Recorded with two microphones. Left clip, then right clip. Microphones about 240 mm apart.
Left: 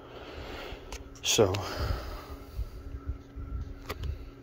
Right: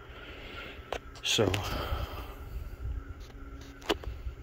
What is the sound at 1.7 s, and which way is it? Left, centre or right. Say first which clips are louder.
Gasp: right 1 dB; centre.